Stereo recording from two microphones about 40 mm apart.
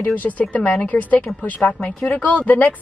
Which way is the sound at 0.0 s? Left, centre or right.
Left.